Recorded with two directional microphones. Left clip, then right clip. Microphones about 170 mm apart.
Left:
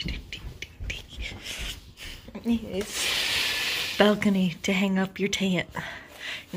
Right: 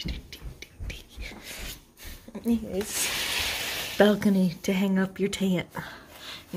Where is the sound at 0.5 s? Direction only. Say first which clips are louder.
Left 7 dB; centre (ahead or behind).